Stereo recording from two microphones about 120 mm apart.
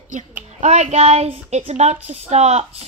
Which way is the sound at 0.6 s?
70° right (ahead or behind).